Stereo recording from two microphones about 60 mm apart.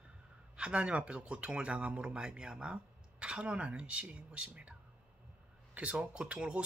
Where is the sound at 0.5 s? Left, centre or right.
Centre.